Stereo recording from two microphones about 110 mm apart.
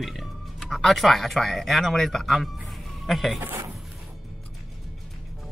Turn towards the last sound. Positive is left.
turn(degrees=-20)  # may be behind; listen again after turning